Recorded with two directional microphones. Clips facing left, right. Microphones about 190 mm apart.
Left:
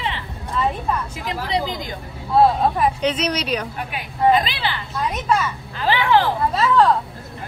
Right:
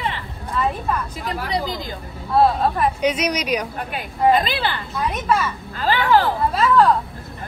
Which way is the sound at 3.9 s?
50° right (ahead or behind).